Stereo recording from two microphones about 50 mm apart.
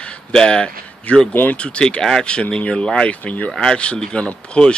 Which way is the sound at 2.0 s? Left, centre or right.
Centre.